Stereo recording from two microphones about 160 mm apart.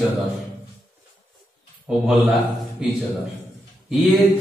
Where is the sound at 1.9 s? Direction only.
5° right (ahead or behind).